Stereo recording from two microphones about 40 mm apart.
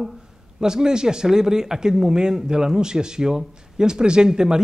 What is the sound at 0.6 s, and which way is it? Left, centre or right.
A man's voice, centre.